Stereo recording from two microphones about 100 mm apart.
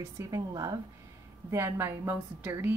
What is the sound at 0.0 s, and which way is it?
A woman's voice, 30° right (ahead or behind).